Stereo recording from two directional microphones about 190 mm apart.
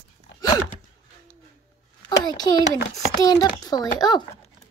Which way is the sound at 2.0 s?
20° left (ahead or behind).